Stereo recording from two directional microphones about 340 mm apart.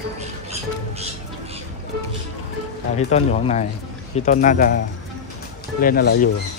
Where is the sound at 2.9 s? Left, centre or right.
Centre.